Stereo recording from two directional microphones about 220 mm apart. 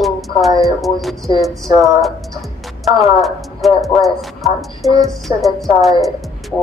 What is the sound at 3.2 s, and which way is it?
Speech, centre (ahead or behind).